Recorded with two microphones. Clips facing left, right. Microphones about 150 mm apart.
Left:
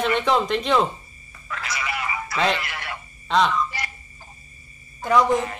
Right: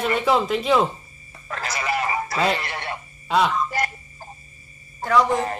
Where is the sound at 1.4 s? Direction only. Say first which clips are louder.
Right 3 dB; 40° right (ahead or behind).